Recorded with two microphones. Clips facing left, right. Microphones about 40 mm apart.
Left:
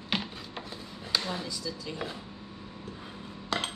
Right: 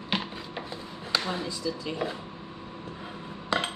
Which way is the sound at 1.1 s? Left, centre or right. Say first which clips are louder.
Right 3 dB; centre.